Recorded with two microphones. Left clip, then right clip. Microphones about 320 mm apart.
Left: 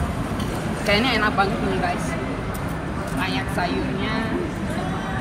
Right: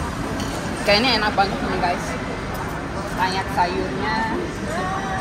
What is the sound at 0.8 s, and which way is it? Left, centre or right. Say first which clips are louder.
Speech: right 2 dB; centre.